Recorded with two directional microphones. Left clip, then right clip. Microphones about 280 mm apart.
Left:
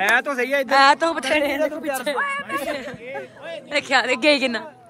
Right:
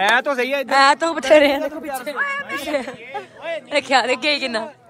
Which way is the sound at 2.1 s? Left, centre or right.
Centre.